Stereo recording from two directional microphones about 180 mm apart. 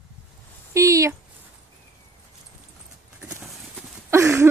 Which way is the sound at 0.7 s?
15° right (ahead or behind).